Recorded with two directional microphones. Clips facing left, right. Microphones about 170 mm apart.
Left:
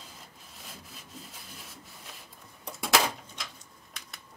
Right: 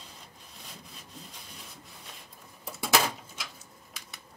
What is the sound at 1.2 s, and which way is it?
Rub, 5° left (ahead or behind).